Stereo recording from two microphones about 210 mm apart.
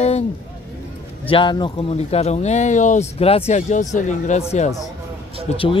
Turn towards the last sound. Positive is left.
turn(degrees=25)  # may be behind; listen again after turning